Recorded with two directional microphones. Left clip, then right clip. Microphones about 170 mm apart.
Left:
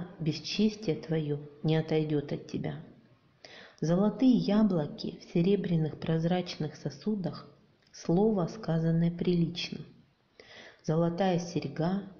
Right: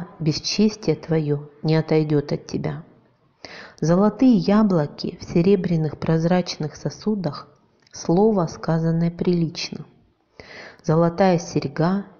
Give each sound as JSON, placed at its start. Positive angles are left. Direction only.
{"t": 0.2, "sound": "a woman's voice", "side_deg": -20}